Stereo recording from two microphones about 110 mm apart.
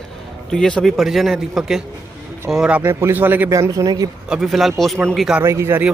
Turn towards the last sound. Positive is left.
turn(degrees=-25)  # may be behind; listen again after turning